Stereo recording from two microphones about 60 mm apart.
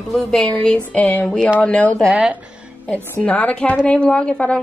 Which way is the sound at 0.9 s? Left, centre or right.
Left.